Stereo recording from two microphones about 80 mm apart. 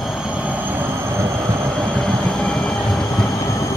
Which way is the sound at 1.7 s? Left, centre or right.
Centre.